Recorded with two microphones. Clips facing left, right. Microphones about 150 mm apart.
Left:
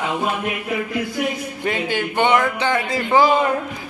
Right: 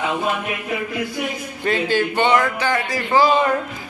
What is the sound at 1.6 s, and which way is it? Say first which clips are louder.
Speech: right 4 dB; 15° left (ahead or behind).